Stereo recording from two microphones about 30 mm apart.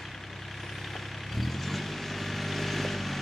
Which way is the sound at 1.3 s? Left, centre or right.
Centre.